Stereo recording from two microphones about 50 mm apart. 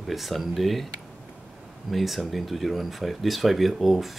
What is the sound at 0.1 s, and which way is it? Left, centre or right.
Speech, centre.